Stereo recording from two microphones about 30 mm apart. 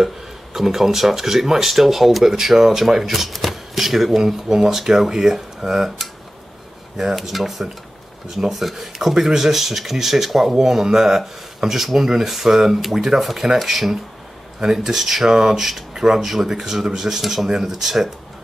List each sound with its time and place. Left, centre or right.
0.0 s speech: centre
3.0 s speech: centre
5.8 s speech: centre
14.6 s speech: centre